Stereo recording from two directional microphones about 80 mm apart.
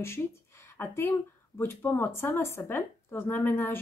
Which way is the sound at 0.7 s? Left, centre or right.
Left.